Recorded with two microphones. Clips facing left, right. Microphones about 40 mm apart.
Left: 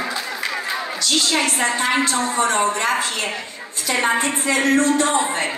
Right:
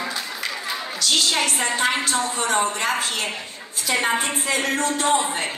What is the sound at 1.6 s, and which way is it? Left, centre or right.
Speech, centre.